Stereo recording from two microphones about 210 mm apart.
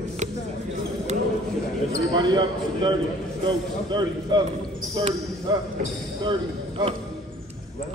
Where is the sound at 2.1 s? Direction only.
20° right (ahead or behind).